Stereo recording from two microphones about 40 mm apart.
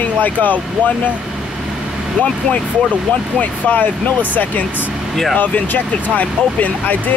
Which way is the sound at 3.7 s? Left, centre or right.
Left.